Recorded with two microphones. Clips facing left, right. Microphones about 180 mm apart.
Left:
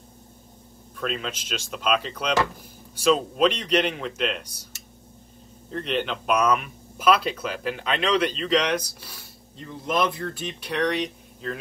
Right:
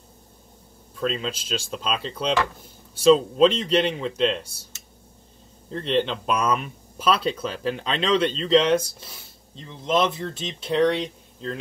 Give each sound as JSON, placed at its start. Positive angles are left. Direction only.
{"t": 0.9, "sound": "speech", "side_deg": -30}
{"t": 5.9, "sound": "speech", "side_deg": -30}